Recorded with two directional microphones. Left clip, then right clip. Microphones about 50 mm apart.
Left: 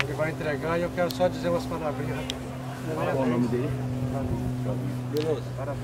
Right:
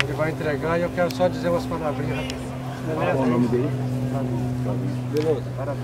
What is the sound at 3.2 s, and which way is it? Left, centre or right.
Speech, centre.